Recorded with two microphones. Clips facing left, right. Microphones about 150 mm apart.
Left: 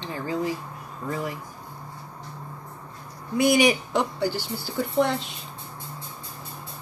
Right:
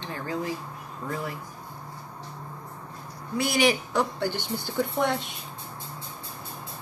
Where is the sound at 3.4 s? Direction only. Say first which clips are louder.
Left 4 dB; 15° left (ahead or behind).